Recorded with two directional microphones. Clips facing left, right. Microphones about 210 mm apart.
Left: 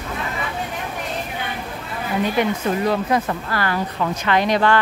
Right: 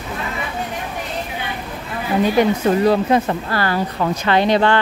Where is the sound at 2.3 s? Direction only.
35° right (ahead or behind).